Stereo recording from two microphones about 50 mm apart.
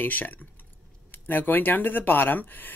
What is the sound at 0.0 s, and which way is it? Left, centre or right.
Speech, left.